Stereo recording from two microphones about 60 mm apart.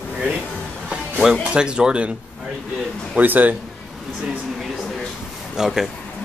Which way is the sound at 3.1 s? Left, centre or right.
Right.